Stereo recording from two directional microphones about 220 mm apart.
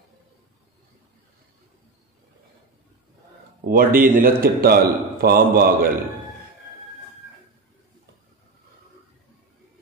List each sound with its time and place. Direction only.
3.6 s a man's voice: 40° right (ahead or behind)